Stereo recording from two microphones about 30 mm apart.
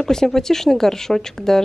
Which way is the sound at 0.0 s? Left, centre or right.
Centre.